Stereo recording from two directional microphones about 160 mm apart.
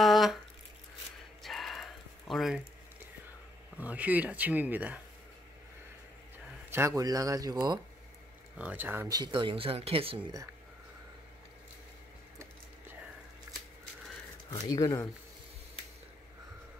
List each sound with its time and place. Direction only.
0.0 s drip: centre (ahead or behind)
1.4 s a sound: centre (ahead or behind)
3.7 s speech: 10° right (ahead or behind)
6.7 s speech: 20° right (ahead or behind)
8.5 s speech: 10° right (ahead or behind)
9.2 s speech: 30° right (ahead or behind)
14.5 s speech: 20° left (ahead or behind)